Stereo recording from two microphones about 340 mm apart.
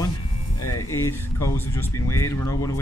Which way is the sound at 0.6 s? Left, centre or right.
Left.